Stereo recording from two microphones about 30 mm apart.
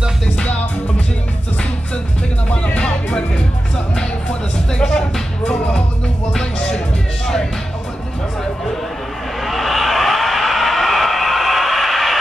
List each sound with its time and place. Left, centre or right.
2.5 s music: left
3.9 s music: left
6.3 s music: left
9.4 s a sound: centre